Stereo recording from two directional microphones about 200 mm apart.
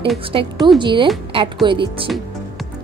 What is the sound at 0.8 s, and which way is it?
A woman's voice, 25° right (ahead or behind).